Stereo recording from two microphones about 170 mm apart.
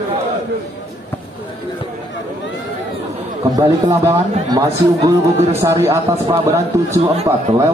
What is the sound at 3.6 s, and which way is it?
Speech, 20° right (ahead or behind).